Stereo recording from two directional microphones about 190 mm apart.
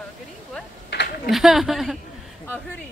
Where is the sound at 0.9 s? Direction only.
65° left (ahead or behind).